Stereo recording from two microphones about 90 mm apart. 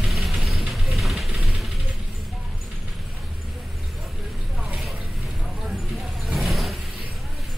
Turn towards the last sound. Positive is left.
turn(degrees=0)  # may be behind; listen again after turning